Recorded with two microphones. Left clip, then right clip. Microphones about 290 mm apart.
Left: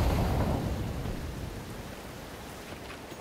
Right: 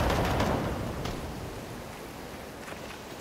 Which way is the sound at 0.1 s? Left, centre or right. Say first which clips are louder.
Right 4 dB; right.